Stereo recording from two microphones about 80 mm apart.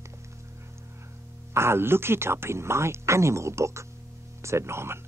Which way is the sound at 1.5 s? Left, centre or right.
Right.